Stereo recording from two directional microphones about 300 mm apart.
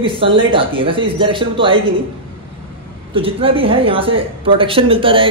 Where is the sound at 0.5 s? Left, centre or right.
Centre.